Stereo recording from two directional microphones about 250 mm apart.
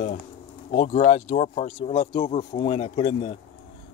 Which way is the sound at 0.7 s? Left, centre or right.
Left.